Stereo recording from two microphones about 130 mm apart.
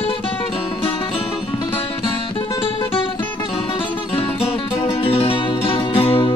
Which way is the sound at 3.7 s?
45° left (ahead or behind).